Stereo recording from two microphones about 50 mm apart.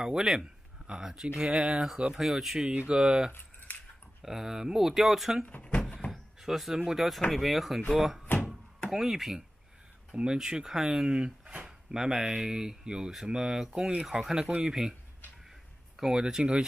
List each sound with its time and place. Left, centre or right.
0.0 s speech: centre
2.7 s speech: right
3.0 s speech: centre
3.7 s a sound: left
4.2 s speech: centre
5.4 s a sound: left
6.4 s speech: centre
8.9 s speech: centre
10.1 s speech: centre
16.0 s speech: centre